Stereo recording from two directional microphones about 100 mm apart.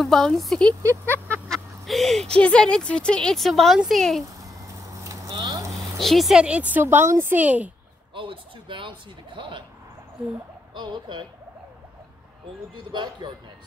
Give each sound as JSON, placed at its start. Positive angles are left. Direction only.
{"t": 0.0, "sound": "a woman's voice", "side_deg": 5}
{"t": 1.0, "sound": "a sound", "side_deg": 20}
{"t": 1.5, "sound": "a sound", "side_deg": 0}
{"t": 2.3, "sound": "a woman's voice", "side_deg": 10}
{"t": 4.4, "sound": "vehicle", "side_deg": -35}
{"t": 5.9, "sound": "a woman's voice", "side_deg": 0}
{"t": 6.4, "sound": "a woman's voice", "side_deg": -15}
{"t": 8.1, "sound": "speech", "side_deg": -60}
{"t": 10.7, "sound": "speech", "side_deg": -50}
{"t": 12.7, "sound": "speech", "side_deg": -50}